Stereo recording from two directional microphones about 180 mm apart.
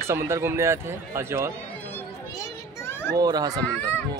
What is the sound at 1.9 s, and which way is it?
Children playing, 15° left (ahead or behind).